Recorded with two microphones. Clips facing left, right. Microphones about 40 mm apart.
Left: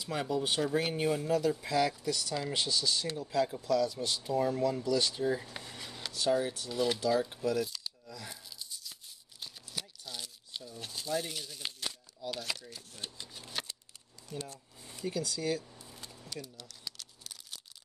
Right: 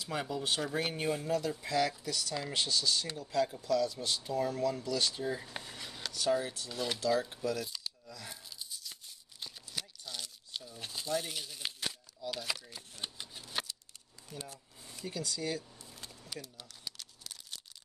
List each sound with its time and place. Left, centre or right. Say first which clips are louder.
0.0 s speech: left 3 dB; centre
5.6 s a sound: even; centre
6.7 s cutlery: left 2 dB; centre
7.6 s tearing: left 3 dB; centre
9.4 s crumpling: even; centre
12.3 s speech: even; centre
13.0 s shuffling cards: right 1 dB; centre
15.0 s speech: left 3 dB; centre
16.8 s crumpling: even; centre